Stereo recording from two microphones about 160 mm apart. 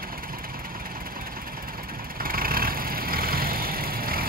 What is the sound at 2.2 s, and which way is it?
Vehicle, 65° right (ahead or behind).